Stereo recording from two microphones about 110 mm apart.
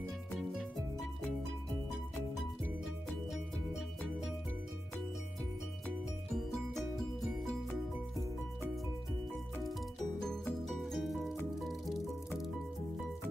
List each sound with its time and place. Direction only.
0.4 s music: 5° right (ahead or behind)
6.3 s music: 5° left (ahead or behind)
10.7 s music: centre (ahead or behind)